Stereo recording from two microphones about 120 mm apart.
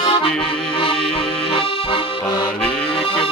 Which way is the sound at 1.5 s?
50° left (ahead or behind).